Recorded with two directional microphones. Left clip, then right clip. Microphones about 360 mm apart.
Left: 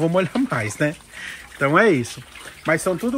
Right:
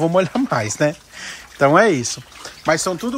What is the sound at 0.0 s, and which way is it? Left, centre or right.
Speech, centre.